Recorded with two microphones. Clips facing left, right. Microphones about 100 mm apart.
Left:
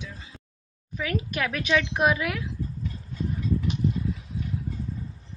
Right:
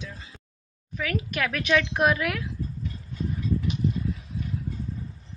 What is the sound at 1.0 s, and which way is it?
A woman's voice, 25° left (ahead or behind).